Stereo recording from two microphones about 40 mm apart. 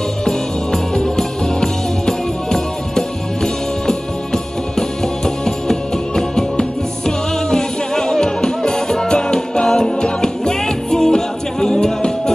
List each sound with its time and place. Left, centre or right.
0.2 s music: centre